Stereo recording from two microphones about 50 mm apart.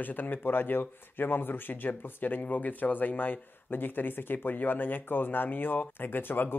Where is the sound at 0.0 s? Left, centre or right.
Left.